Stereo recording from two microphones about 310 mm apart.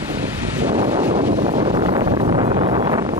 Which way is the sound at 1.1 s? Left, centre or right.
Right.